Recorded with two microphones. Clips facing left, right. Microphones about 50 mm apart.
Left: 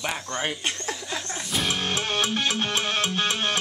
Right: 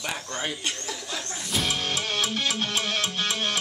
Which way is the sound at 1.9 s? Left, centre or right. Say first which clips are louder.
Left 2 dB; left.